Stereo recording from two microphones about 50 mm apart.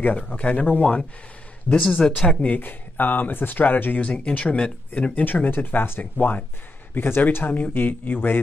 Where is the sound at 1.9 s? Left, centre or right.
Centre.